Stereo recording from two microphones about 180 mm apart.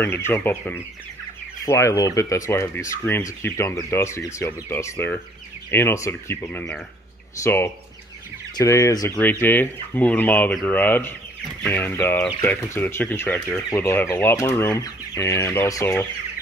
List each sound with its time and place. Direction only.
0.3 s speech: 10° left (ahead or behind)